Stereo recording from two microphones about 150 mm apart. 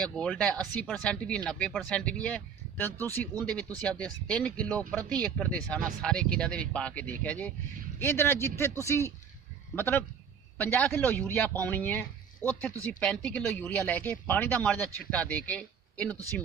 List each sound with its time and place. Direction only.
0.0 s speech: 5° left (ahead or behind)